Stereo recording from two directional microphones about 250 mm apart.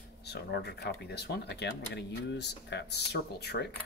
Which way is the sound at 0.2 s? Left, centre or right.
Left.